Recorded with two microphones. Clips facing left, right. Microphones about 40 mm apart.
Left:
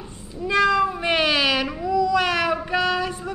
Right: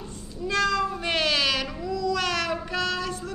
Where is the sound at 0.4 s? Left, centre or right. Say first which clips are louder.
Left 5 dB; centre.